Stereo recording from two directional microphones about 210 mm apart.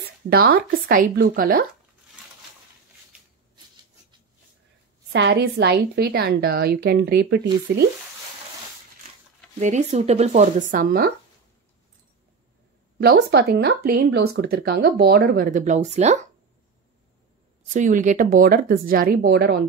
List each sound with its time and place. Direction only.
0.3 s speech: 45° right (ahead or behind)
5.1 s speech: 55° right (ahead or behind)
9.6 s speech: 35° right (ahead or behind)
13.0 s speech: 50° right (ahead or behind); by 16.2 s 35° right (ahead or behind)
17.7 s speech: 35° right (ahead or behind)